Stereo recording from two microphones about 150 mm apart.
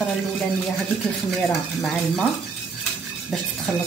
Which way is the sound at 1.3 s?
Centre (ahead or behind).